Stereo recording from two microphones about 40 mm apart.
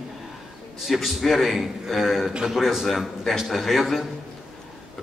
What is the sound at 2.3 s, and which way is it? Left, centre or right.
Speech, right.